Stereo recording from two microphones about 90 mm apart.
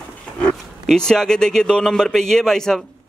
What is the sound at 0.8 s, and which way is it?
A man's voice, 5° left (ahead or behind).